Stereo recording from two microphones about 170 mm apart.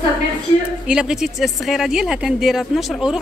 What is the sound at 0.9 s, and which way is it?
Speech, 5° right (ahead or behind).